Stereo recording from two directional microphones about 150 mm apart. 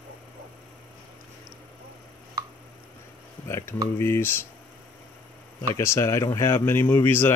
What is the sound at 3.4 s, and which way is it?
Speech, 15° left (ahead or behind).